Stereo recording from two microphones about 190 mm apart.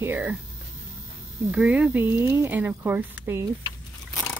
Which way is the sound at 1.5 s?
5° right (ahead or behind).